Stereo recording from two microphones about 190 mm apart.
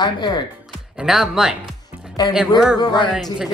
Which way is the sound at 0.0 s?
20° left (ahead or behind).